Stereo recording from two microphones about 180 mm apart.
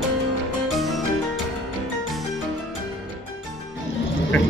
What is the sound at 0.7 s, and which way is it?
Music, centre (ahead or behind).